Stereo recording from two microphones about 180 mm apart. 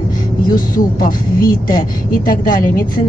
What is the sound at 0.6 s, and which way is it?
A woman's voice, 50° left (ahead or behind).